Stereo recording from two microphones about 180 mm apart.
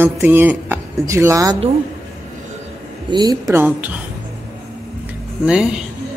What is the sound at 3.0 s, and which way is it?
Speech, 25° right (ahead or behind).